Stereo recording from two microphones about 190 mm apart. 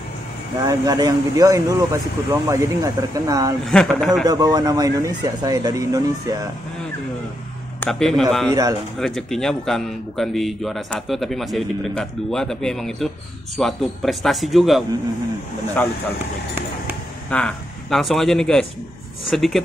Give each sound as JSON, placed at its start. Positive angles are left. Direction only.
{"t": 0.6, "sound": "speech", "side_deg": -15}
{"t": 3.6, "sound": "a man's voice", "side_deg": 0}
{"t": 4.3, "sound": "speech", "side_deg": -20}
{"t": 7.8, "sound": "a man's voice", "side_deg": 0}
{"t": 15.8, "sound": "speech", "side_deg": 5}
{"t": 17.3, "sound": "a man's voice", "side_deg": 5}